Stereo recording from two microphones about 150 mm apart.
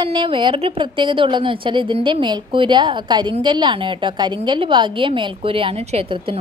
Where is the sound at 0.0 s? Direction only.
35° right (ahead or behind).